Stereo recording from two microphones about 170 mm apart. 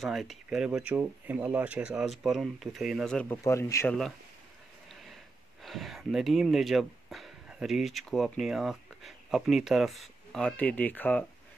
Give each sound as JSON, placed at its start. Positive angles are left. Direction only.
{"t": 0.0, "sound": "speech", "side_deg": 0}
{"t": 3.4, "sound": "speech", "side_deg": 15}
{"t": 5.6, "sound": "speech", "side_deg": 0}